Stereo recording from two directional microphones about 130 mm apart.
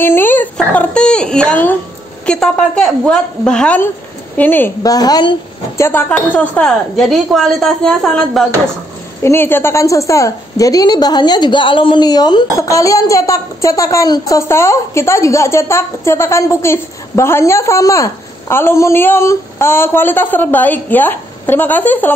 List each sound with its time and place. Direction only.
0.0 s a woman's voice: 15° left (ahead or behind)
4.8 s a woman's voice: 30° left (ahead or behind)
5.8 s a woman's voice: 15° left (ahead or behind)
9.2 s a woman's voice: 20° left (ahead or behind)